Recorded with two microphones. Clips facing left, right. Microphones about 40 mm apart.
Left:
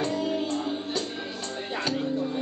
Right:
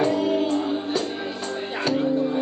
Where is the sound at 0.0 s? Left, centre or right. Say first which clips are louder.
Right 6 dB; centre.